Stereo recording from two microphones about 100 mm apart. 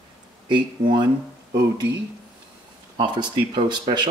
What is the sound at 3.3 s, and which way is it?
Speech, 50° right (ahead or behind).